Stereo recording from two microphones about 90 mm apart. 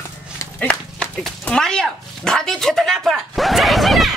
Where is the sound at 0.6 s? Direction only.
15° left (ahead or behind).